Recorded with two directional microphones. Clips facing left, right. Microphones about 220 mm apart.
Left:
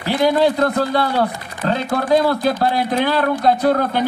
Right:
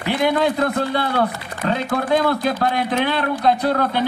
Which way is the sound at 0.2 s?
35° left (ahead or behind).